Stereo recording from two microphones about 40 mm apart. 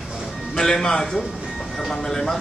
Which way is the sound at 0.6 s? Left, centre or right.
Centre.